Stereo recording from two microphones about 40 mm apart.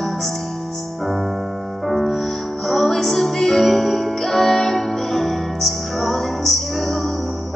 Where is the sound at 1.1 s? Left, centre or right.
Centre.